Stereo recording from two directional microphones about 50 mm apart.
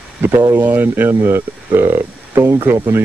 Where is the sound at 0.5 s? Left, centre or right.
Right.